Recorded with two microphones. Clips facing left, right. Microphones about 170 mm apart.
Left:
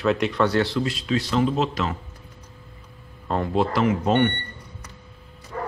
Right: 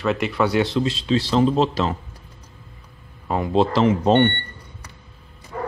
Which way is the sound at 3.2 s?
10° right (ahead or behind).